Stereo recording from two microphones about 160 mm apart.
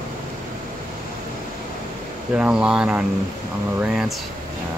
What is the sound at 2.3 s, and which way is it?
Speech, 5° right (ahead or behind).